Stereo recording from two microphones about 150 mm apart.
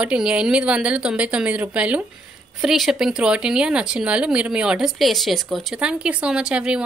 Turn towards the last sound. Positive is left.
turn(degrees=-5)  # may be behind; listen again after turning